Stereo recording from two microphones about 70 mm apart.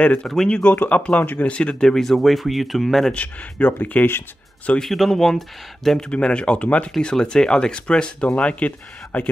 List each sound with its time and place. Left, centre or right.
0.0 s speech: centre
0.3 s speech: centre
0.6 s speech: left; by 3.2 s centre
3.2 s speech: left
4.8 s speech: centre; by 9.3 s left